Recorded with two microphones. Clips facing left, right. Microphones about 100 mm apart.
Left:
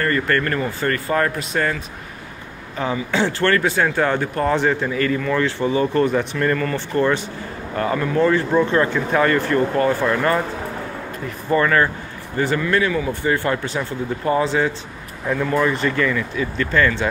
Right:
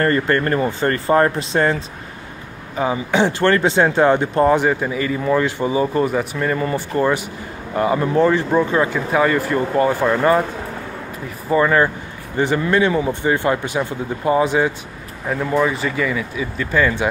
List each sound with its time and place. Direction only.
0.0 s speech: 30° right (ahead or behind)
2.7 s speech: 15° right (ahead or behind)
11.4 s speech: 15° right (ahead or behind)